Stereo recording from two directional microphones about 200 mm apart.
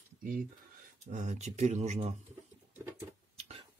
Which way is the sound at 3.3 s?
30° right (ahead or behind).